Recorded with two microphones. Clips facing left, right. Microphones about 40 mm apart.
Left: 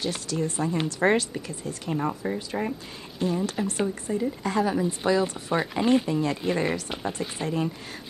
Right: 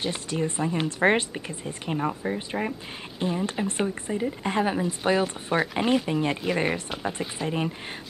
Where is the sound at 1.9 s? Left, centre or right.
Centre.